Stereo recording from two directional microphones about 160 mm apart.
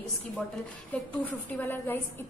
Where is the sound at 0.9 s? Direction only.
10° left (ahead or behind).